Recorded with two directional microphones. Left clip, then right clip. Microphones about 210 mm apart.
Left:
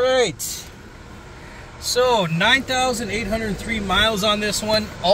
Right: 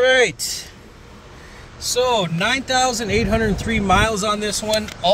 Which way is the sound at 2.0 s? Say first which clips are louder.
Left 1 dB; 5° right (ahead or behind).